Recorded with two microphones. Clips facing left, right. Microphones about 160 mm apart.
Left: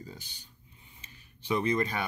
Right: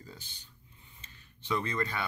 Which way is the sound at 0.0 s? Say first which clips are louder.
Left 4 dB; 15° left (ahead or behind).